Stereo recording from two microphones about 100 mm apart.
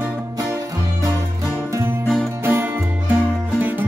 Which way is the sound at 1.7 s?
30° right (ahead or behind).